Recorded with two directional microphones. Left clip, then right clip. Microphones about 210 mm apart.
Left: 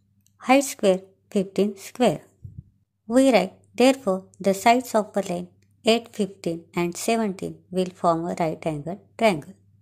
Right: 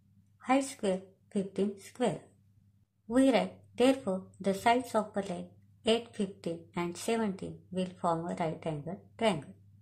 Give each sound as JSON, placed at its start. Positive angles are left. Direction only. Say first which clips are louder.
{"t": 0.4, "sound": "a woman's voice", "louder": "left 11 dB", "side_deg": 40}